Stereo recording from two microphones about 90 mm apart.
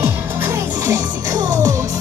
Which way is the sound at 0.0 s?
25° right (ahead or behind).